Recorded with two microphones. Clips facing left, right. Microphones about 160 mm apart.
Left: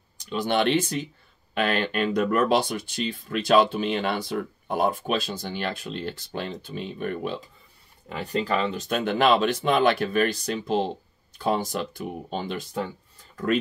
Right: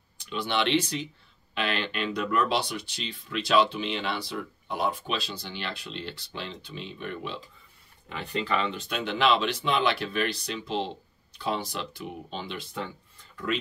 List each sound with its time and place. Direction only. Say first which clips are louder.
0.3 s speech: left 4 dB; 45° left (ahead or behind)